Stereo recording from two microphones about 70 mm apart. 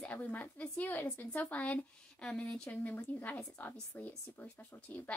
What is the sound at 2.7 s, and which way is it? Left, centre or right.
A woman's voice, left.